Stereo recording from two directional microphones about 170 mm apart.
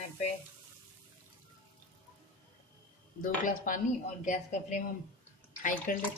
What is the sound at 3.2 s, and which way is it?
Speech, 50° left (ahead or behind).